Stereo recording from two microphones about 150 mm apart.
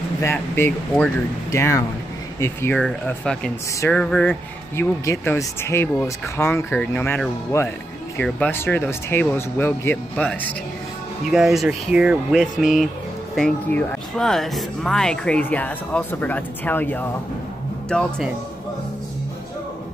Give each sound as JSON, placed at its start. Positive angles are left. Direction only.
{"t": 0.2, "sound": "speech", "side_deg": 15}
{"t": 2.8, "sound": "speech", "side_deg": 5}
{"t": 4.7, "sound": "speech", "side_deg": 20}
{"t": 11.2, "sound": "speech", "side_deg": 0}